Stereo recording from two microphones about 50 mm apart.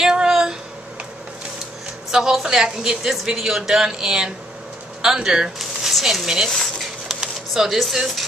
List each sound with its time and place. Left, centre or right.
0.0 s a sound: centre
2.0 s a woman's voice: centre
6.2 s a woman's voice: centre
6.5 s dishes: centre
7.2 s speech: centre